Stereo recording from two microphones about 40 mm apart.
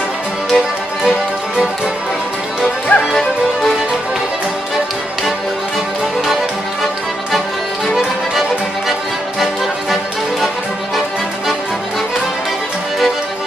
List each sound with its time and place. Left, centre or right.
2.9 s music: left